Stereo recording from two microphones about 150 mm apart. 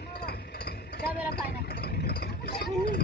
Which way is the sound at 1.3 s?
90° left.